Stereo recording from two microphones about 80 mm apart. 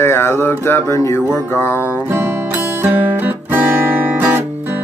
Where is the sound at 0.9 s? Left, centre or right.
Left.